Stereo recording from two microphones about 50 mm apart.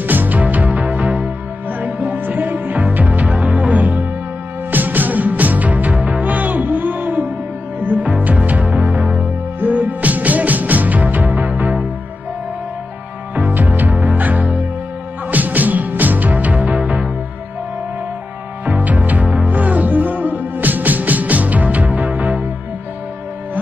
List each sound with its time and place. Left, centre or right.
0.0 s music: right
4.6 s music: right
13.3 s music: right
18.7 s music: right